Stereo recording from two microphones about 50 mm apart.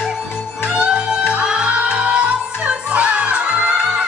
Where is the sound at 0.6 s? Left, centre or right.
Centre.